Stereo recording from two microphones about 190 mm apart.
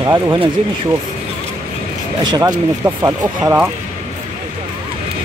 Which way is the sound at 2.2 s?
20° right (ahead or behind).